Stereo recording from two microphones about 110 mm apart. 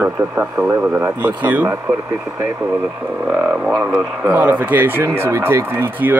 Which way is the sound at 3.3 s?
10° right (ahead or behind).